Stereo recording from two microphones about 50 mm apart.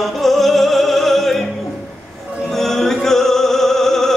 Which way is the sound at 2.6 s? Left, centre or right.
Centre.